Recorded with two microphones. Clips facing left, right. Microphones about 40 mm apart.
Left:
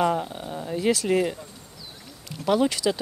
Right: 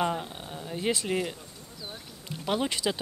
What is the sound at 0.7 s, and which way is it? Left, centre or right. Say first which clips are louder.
Speech: left 6 dB; right.